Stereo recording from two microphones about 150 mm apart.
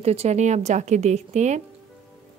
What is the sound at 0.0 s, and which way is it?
A woman's voice, 45° right (ahead or behind).